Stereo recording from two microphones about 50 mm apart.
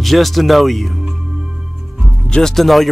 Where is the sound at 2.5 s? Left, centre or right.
Centre.